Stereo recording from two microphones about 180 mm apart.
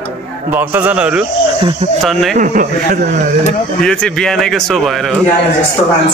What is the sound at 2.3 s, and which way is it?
Speech, 45° right (ahead or behind).